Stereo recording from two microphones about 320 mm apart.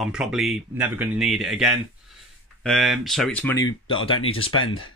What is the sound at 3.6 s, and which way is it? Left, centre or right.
Speech, left.